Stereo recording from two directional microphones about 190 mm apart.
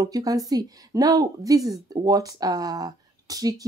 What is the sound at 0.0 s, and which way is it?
A woman's voice, 20° right (ahead or behind).